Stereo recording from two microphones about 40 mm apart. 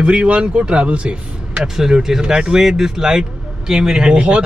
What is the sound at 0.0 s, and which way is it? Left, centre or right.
Speech, right.